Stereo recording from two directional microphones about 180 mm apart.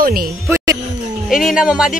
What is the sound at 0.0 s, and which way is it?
Speech, 55° right (ahead or behind).